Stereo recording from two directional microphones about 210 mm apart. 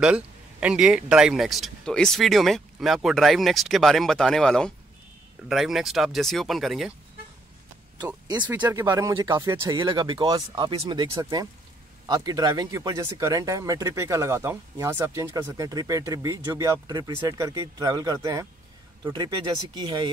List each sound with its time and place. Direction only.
0.0 s speech: 5° right (ahead or behind)
8.5 s speech: 10° right (ahead or behind)